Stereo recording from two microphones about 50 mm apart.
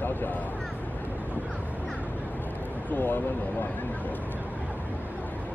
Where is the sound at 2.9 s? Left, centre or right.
Left.